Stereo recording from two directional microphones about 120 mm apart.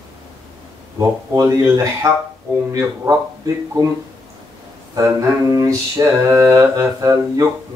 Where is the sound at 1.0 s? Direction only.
25° right (ahead or behind).